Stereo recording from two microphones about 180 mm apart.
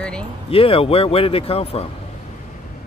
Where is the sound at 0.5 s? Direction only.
30° left (ahead or behind).